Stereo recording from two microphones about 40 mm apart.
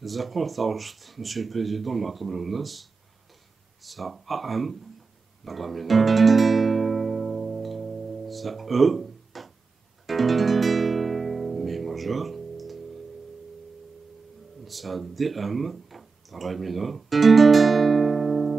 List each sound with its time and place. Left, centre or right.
0.0 s speech: centre
5.4 s guitar: centre
14.6 s a sound: centre